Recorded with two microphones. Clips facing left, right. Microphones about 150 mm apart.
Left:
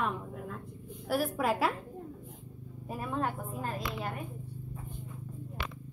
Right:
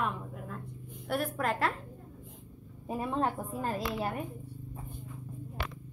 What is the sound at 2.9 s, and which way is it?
Speech, 25° right (ahead or behind).